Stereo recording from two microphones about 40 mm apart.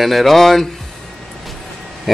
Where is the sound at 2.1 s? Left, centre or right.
Centre.